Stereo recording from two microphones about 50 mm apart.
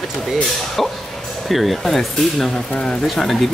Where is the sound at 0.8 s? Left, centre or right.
Centre.